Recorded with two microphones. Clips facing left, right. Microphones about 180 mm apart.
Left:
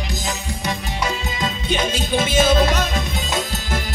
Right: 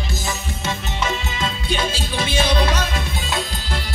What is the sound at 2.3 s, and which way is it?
Music, 45° left (ahead or behind).